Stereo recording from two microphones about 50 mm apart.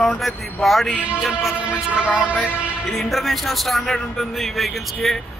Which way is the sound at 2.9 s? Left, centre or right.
Centre.